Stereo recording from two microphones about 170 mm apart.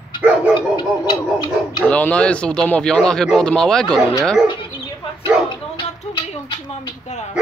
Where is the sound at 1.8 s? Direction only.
5° left (ahead or behind).